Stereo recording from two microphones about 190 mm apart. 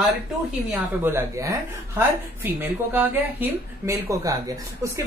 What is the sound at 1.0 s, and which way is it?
Speech, 15° right (ahead or behind).